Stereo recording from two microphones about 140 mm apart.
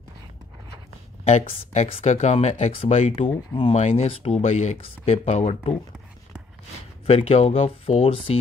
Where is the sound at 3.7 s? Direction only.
50° left (ahead or behind).